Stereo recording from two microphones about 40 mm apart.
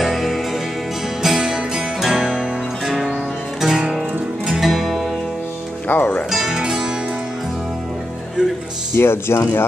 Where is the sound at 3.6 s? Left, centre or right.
Centre.